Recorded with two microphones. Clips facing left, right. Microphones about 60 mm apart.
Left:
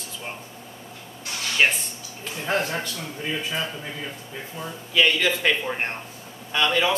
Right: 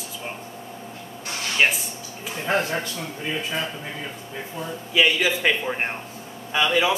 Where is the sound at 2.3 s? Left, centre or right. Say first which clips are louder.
Right 2 dB; centre.